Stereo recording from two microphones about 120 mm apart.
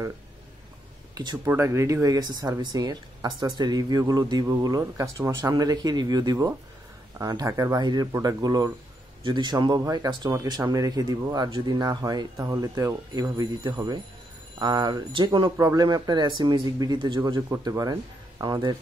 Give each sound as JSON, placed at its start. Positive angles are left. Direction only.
{"t": 1.1, "sound": "speech", "side_deg": -35}
{"t": 1.4, "sound": "speech", "side_deg": -25}
{"t": 15.5, "sound": "speech", "side_deg": -30}
{"t": 17.4, "sound": "speech", "side_deg": -30}